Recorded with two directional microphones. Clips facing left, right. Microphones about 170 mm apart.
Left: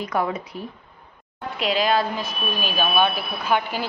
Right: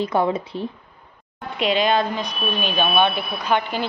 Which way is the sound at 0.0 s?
30° right (ahead or behind).